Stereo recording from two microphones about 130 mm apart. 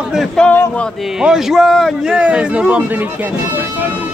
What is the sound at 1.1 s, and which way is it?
A man's voice, 5° right (ahead or behind).